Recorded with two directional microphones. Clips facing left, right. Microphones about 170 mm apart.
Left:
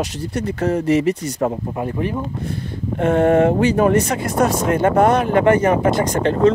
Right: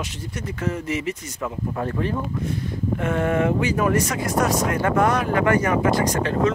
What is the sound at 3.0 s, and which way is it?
Speech, 30° left (ahead or behind).